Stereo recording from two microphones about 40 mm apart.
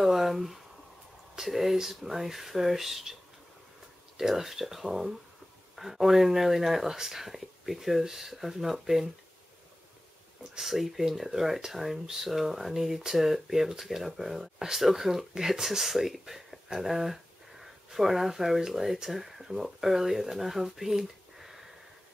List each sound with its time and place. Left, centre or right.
0.0 s a sound: centre
1.3 s speech: centre
4.2 s speech: centre
10.6 s speech: centre